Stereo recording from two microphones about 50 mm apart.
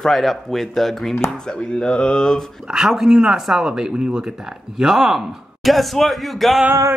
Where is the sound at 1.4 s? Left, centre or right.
Centre.